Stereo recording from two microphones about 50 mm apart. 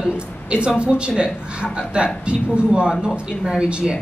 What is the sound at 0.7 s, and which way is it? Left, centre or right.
Speech, right.